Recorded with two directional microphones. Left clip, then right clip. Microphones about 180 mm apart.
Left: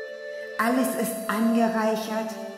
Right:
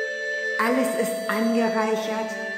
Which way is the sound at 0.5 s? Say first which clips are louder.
Right 1 dB; 45° left (ahead or behind).